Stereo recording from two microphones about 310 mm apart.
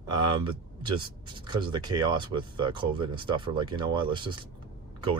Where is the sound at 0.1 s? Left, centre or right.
Centre.